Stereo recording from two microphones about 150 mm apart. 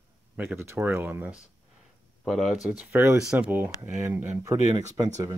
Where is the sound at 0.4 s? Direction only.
15° right (ahead or behind).